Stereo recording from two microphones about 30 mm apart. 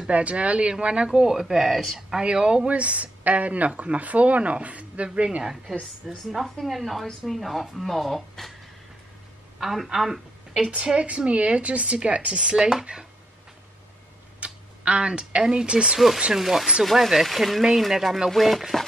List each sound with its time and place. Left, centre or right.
0.1 s speech: right
1.1 s speech: centre
2.2 s speech: right
2.7 s speech: right
5.4 s speech: centre
6.0 s speech: centre
9.6 s a woman's voice: centre
11.0 s speech: right
14.4 s tick-tock: right
15.5 s speech: right
16.3 s speech: centre